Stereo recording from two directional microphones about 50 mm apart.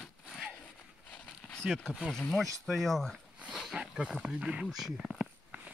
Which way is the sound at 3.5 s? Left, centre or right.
Centre.